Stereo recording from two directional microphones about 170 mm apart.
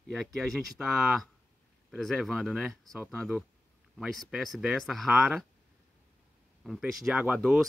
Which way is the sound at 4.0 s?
Centre (ahead or behind).